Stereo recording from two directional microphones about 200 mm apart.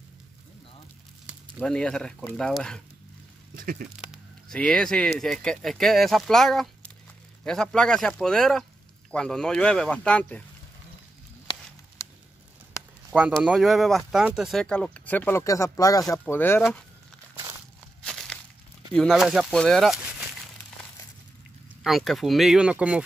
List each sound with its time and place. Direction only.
1.2 s speech: 5° left (ahead or behind)
3.5 s speech: 45° right (ahead or behind)
4.1 s a sound: 5° left (ahead or behind)
5.2 s speech: centre (ahead or behind)
12.0 s a sound: 10° left (ahead or behind)
13.1 s speech: 5° right (ahead or behind); by 16.6 s 10° left (ahead or behind)
18.0 s crushing: 5° left (ahead or behind)
18.9 s speech: centre (ahead or behind)
21.8 s speech: centre (ahead or behind)